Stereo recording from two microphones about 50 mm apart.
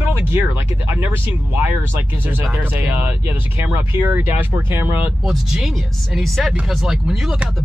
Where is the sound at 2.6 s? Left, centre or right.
Right.